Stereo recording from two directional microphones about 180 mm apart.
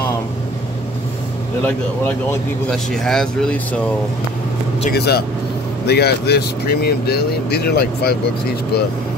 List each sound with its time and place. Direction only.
1.6 s speech: 10° left (ahead or behind)
4.9 s speech: 65° left (ahead or behind)